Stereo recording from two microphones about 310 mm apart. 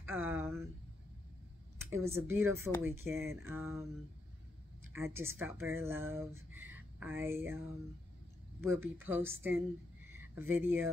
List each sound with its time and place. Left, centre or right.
0.0 s a sound: centre
1.9 s speech: centre
4.9 s speech: centre
8.6 s speech: centre